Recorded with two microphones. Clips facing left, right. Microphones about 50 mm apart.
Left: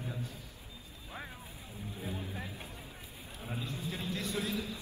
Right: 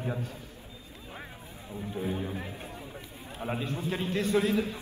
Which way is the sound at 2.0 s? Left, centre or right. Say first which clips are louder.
Right 9 dB; right.